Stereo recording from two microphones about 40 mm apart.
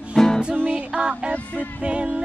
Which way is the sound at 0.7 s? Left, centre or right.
Right.